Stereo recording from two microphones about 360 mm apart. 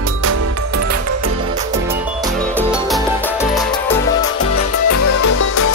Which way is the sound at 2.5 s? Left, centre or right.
Centre.